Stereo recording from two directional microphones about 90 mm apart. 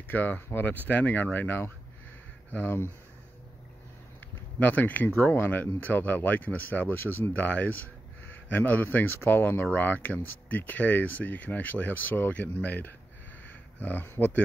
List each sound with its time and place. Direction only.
0.1 s speech: 20° left (ahead or behind)
4.6 s speech: 20° left (ahead or behind)